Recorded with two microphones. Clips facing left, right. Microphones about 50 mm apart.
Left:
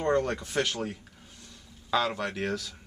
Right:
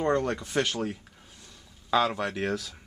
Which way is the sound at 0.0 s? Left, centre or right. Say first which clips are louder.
Even; centre.